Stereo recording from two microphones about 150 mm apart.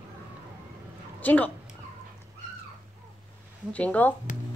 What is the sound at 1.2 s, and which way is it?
Speech, 10° left (ahead or behind).